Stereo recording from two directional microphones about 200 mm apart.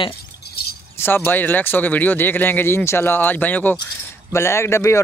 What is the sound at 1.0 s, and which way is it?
Speech, 10° left (ahead or behind).